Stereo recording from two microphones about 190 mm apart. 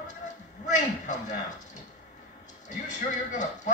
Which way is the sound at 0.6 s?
40° left (ahead or behind).